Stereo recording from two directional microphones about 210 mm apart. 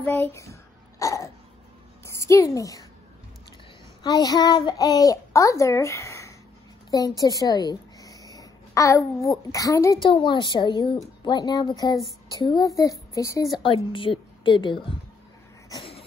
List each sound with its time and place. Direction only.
0.0 s a sound: 10° left (ahead or behind)
2.0 s a woman's voice: 15° left (ahead or behind)
4.0 s a child's voice: 20° left (ahead or behind)
6.9 s a sound: 15° left (ahead or behind)
9.5 s a child's voice: 15° left (ahead or behind)
15.7 s cough: 25° left (ahead or behind)